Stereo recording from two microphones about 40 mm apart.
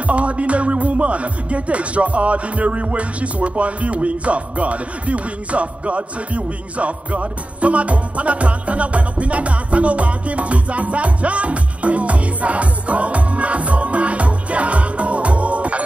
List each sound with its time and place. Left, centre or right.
0.0 s speech: right